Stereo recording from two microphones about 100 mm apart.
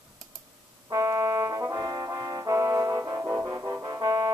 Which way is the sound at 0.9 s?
30° right (ahead or behind).